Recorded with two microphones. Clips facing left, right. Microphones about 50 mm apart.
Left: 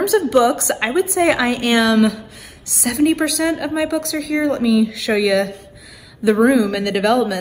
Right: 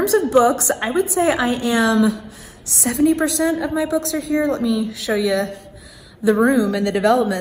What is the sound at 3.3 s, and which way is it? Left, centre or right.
Speech, left.